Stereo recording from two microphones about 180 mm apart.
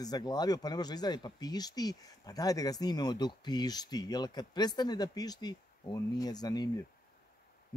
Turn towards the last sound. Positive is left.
turn(degrees=20)  # may be behind; listen again after turning